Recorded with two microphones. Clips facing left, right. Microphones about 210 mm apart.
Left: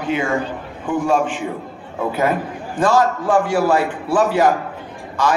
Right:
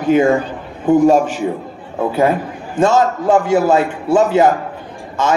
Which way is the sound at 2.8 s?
25° right (ahead or behind).